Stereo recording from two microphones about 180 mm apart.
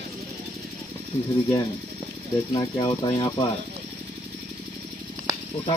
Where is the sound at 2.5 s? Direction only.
20° left (ahead or behind).